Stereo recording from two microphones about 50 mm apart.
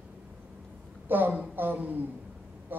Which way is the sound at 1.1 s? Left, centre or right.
Right.